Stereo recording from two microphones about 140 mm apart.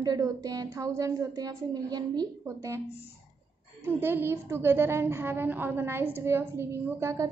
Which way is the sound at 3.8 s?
15° right (ahead or behind).